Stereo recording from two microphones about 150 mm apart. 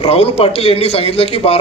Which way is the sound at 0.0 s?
40° left (ahead or behind).